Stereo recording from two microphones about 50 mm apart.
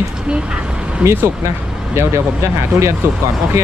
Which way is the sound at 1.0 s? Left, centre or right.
Centre.